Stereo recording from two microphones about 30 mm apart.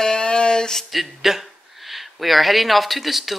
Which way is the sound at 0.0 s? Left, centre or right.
Left.